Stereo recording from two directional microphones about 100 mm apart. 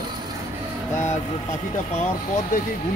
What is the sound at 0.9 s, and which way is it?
Speech, 25° left (ahead or behind).